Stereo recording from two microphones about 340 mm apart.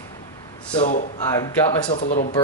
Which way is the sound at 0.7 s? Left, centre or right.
Left.